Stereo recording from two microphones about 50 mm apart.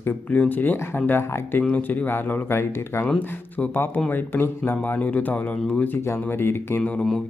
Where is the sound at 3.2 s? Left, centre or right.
Left.